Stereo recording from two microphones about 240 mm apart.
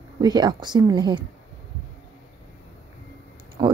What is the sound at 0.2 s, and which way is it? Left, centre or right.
A woman's voice, centre.